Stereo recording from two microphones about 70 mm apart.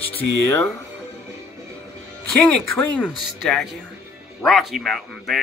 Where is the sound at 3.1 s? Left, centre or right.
Centre.